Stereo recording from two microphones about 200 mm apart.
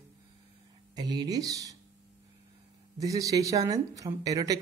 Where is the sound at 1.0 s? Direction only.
20° right (ahead or behind).